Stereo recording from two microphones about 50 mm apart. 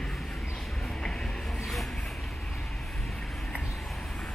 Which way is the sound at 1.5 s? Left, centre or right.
Centre.